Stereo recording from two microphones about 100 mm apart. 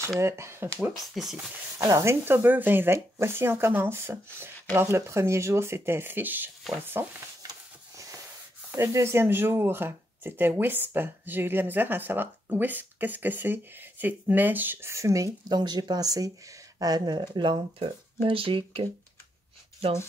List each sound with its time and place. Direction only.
0.2 s speech: 25° right (ahead or behind)
1.1 s speech: 5° right (ahead or behind)
1.8 s speech: 30° right (ahead or behind)
8.7 s speech: 25° right (ahead or behind)
15.4 s speech: 45° right (ahead or behind)
17.6 s speech: 60° right (ahead or behind)